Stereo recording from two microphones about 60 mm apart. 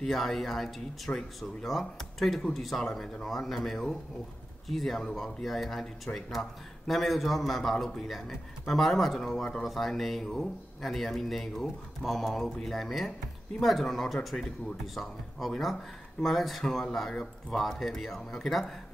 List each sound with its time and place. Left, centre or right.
0.0 s a man's voice: centre
6.1 s speech: left
6.9 s a man's voice: centre
17.6 s a man's voice: centre